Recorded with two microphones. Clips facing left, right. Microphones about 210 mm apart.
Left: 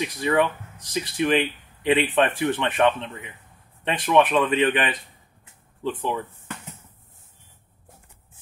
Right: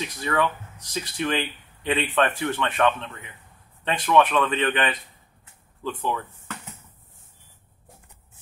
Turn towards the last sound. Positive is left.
turn(degrees=25)  # may be behind; listen again after turning